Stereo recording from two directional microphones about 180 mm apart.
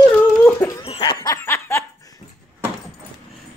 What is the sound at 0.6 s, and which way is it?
Laughter, 30° left (ahead or behind).